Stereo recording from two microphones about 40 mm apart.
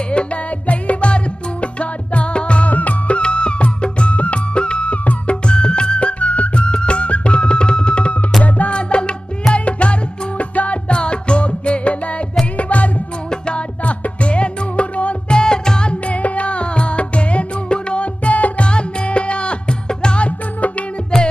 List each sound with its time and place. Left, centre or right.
0.1 s music: left
3.2 s music: left
15.3 s music: centre
15.9 s music: left
18.7 s music: left
21.1 s music: centre